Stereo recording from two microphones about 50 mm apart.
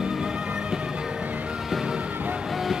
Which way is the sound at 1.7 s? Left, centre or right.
Centre.